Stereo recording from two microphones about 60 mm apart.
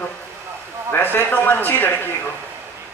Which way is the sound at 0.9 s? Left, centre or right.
Left.